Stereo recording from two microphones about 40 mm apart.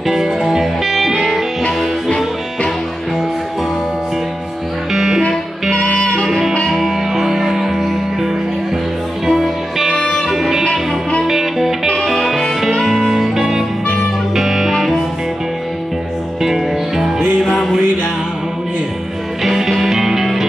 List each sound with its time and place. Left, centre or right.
0.0 s music: centre
1.1 s music: centre
4.9 s music: centre
5.9 s music: centre
6.7 s music: centre
9.9 s music: centre
10.3 s music: centre
16.4 s music: centre
19.4 s music: centre